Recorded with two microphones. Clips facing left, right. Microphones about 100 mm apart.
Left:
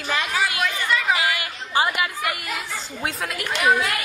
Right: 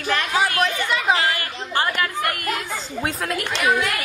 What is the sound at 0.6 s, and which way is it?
Chatter, 20° right (ahead or behind).